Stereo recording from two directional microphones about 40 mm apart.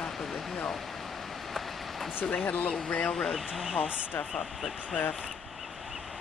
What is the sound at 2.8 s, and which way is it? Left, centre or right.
Speech, left.